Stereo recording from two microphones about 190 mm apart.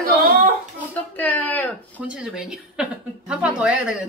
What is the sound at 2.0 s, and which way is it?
Speech, 5° right (ahead or behind).